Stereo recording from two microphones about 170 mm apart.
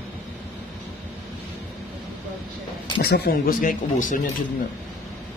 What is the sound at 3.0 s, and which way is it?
Speech, 70° left (ahead or behind).